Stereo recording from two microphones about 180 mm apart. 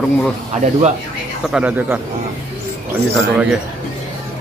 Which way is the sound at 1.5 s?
5° right (ahead or behind).